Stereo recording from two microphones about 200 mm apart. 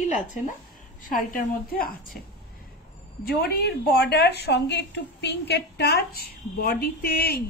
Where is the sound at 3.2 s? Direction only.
50° left (ahead or behind).